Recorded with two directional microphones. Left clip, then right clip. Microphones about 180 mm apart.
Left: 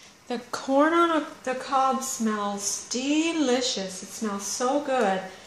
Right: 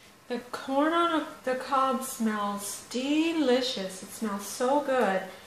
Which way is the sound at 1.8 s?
25° left (ahead or behind).